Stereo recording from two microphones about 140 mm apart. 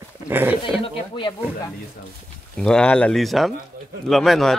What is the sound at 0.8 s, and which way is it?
Speech, 40° left (ahead or behind).